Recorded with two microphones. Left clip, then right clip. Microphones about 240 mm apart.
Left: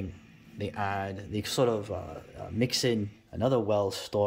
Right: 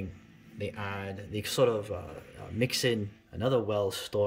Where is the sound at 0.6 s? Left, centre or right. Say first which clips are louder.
Left 5 dB; centre.